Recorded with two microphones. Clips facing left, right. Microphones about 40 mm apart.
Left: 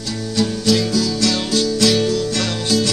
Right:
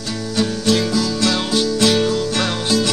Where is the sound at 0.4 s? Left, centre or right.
Right.